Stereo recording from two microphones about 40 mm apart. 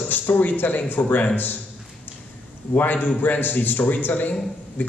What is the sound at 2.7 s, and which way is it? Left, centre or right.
A man's voice, left.